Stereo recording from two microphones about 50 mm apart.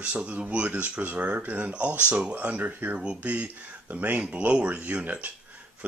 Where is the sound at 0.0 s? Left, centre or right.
Right.